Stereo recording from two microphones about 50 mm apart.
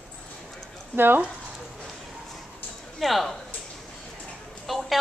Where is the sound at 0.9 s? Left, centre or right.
Right.